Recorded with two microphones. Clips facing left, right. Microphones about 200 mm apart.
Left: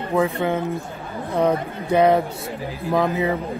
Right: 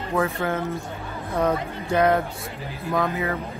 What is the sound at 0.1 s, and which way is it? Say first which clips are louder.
Speech: left 4 dB; 15° left (ahead or behind).